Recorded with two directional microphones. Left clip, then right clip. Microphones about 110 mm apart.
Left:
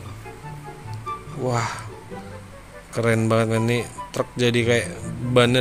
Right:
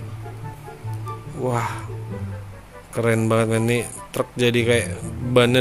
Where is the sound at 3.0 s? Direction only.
10° right (ahead or behind).